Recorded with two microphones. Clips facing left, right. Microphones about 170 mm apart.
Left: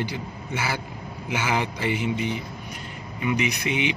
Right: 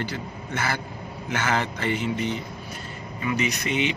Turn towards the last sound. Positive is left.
turn(degrees=10)  # may be behind; listen again after turning